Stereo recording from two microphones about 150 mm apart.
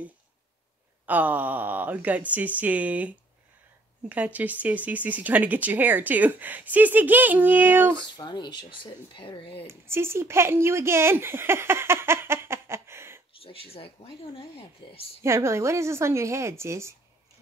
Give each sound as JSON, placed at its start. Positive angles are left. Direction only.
{"t": 1.0, "sound": "speech", "side_deg": -10}
{"t": 8.2, "sound": "speech", "side_deg": 30}
{"t": 9.7, "sound": "speech", "side_deg": -15}
{"t": 13.3, "sound": "speech", "side_deg": 40}
{"t": 15.2, "sound": "a woman's voice", "side_deg": -20}